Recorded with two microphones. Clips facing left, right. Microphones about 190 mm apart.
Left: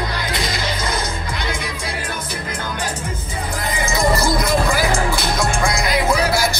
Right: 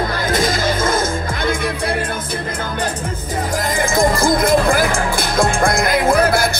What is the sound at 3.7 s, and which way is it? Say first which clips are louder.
Music: right 2 dB; 50° right (ahead or behind).